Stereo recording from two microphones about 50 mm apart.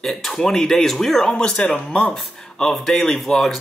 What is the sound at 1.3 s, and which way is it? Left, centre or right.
Speech, centre.